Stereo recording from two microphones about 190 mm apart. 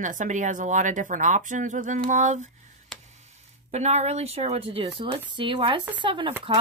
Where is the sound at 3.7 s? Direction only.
35° right (ahead or behind).